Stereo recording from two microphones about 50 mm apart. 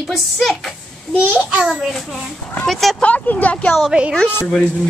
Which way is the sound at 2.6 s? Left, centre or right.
Centre.